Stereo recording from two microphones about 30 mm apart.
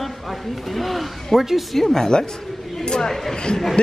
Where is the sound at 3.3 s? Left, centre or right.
Left.